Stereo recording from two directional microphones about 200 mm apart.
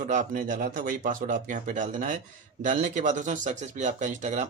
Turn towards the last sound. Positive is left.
turn(degrees=-35)  # may be behind; listen again after turning